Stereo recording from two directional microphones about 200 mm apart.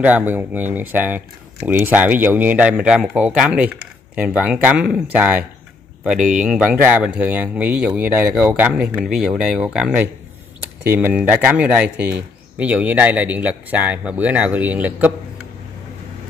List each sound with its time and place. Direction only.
0.0 s speech: 10° right (ahead or behind)
6.1 s speech: 40° right (ahead or behind)
6.4 s speech: 5° right (ahead or behind)